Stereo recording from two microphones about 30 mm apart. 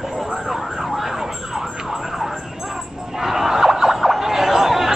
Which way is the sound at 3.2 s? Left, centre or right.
Centre.